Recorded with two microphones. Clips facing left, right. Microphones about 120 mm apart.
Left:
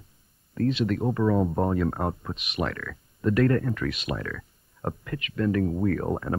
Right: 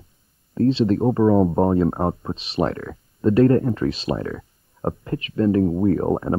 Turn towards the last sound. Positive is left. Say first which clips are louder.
# right 7 dB
turn(degrees=-25)  # may be behind; listen again after turning